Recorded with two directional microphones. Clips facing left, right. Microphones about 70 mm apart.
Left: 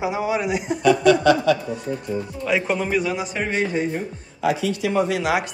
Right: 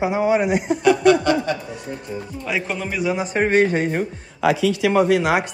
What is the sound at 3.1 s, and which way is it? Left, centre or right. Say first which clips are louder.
Speech: right 6 dB; right.